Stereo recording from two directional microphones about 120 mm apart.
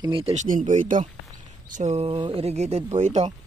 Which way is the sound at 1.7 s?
75° right (ahead or behind).